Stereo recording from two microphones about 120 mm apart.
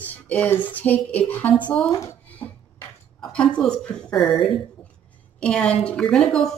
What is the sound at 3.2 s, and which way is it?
A woman's voice, 10° left (ahead or behind).